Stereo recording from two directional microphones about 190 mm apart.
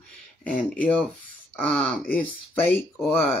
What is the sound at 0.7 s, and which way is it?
Speech, 10° left (ahead or behind).